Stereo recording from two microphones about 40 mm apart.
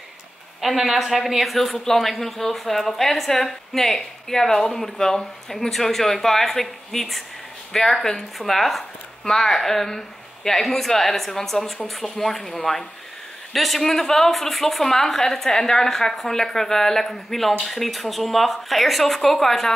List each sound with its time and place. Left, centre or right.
0.6 s a woman's voice: centre
9.2 s a woman's voice: centre